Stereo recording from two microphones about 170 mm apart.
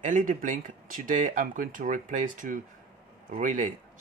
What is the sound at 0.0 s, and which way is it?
Speech, 50° right (ahead or behind).